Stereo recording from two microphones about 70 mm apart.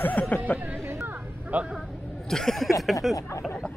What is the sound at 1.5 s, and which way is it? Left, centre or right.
Speech, right.